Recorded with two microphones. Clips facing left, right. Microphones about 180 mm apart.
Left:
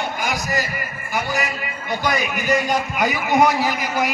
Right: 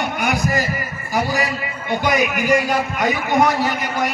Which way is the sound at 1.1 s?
35° right (ahead or behind).